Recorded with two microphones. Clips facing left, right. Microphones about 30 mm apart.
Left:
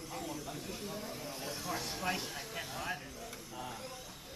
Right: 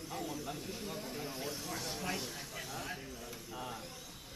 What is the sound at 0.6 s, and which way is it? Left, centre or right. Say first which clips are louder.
Speech: even; centre.